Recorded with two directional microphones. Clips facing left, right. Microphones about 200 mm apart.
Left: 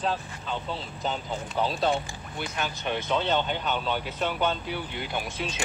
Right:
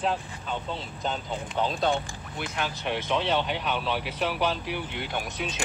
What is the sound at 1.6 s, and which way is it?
Speech, 5° left (ahead or behind).